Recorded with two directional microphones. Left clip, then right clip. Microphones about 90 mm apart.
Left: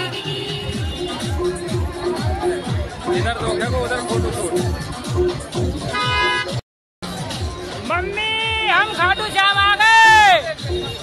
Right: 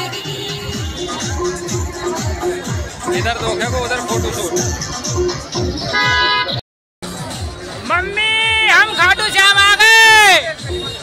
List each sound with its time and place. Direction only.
3.1 s speech: 10° right (ahead or behind)
5.9 s music: 45° right (ahead or behind)
7.9 s a sound: 5° right (ahead or behind)